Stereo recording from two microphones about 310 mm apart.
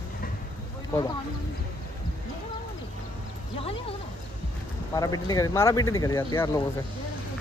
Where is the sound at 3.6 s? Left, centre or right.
Centre.